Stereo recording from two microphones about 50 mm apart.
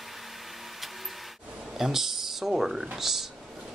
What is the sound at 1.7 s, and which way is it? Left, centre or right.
Speech, centre.